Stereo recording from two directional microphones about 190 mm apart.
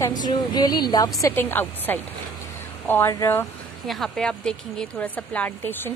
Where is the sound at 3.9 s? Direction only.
Centre (ahead or behind).